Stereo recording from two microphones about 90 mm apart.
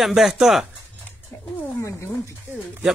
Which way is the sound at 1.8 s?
30° left (ahead or behind).